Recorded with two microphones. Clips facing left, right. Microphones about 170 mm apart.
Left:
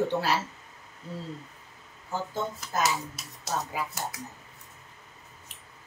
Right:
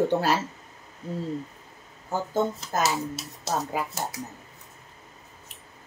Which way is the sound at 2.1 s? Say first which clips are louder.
Right 6 dB; 45° right (ahead or behind).